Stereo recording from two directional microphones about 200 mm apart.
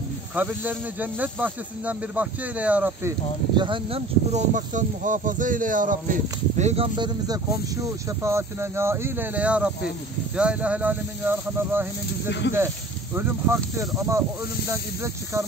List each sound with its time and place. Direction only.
0.4 s speech: 10° right (ahead or behind); by 6.1 s 40° right (ahead or behind)
6.6 s speech: 30° right (ahead or behind); by 11.9 s 10° right (ahead or behind)
12.3 s speech: 60° left (ahead or behind)
12.5 s speech: 10° right (ahead or behind)